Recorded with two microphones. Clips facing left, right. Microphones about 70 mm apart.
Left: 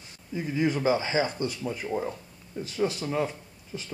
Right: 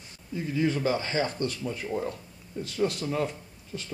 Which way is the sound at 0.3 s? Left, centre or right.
Centre.